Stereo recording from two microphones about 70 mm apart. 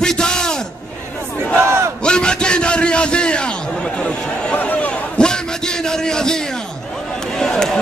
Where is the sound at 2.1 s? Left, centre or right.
Centre.